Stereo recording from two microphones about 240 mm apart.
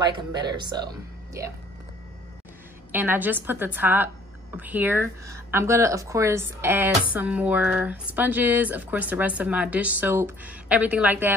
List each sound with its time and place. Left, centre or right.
0.0 s speech: centre
2.9 s speech: centre